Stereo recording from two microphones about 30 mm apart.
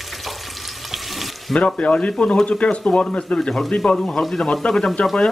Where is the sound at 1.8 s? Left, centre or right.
Left.